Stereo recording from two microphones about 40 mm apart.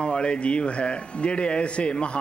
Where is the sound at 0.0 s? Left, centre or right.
Left.